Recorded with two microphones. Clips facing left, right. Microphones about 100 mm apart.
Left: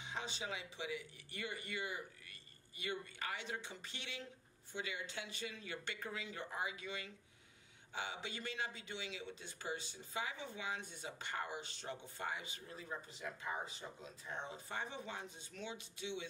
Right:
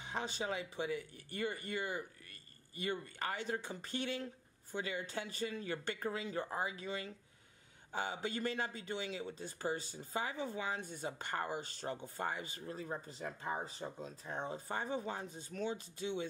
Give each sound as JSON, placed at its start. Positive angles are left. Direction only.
{"t": 0.0, "sound": "speech", "side_deg": -45}